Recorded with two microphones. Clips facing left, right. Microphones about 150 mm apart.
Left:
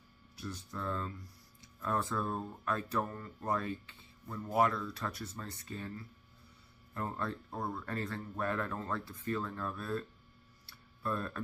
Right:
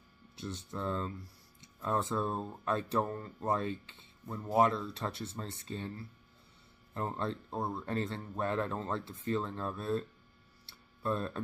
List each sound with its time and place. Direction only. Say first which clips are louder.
0.4 s speech: right 3 dB; 25° right (ahead or behind)
10.7 s tick-tock: right 3 dB; 25° right (ahead or behind)